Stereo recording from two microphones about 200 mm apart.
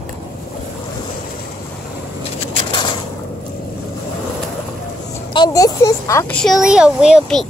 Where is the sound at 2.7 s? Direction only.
25° left (ahead or behind).